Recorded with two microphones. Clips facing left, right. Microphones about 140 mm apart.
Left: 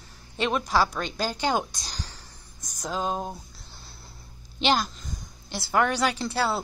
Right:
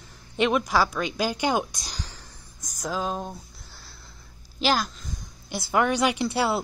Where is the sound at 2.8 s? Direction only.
5° right (ahead or behind).